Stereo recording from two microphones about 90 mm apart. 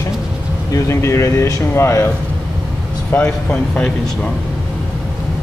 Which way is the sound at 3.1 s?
15° left (ahead or behind).